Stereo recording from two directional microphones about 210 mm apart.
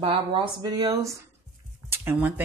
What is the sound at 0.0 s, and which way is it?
Speech, 25° right (ahead or behind).